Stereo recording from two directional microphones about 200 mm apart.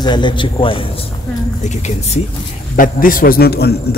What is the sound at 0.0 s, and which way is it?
A man's voice, 20° left (ahead or behind).